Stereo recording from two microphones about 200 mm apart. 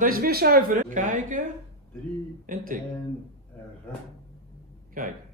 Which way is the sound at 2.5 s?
45° right (ahead or behind).